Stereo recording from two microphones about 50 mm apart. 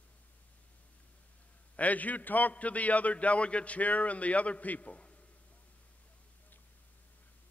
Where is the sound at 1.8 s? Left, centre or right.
Left.